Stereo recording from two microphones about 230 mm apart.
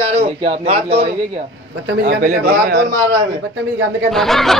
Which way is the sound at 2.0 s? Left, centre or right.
Right.